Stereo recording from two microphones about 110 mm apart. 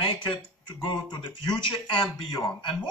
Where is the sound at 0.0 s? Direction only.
50° left (ahead or behind).